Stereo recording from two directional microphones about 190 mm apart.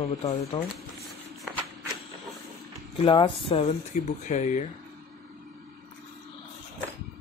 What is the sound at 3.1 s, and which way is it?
Speech, 25° left (ahead or behind).